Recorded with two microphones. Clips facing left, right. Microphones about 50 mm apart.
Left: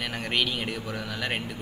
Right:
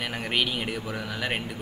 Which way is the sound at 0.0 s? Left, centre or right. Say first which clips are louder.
Even; centre.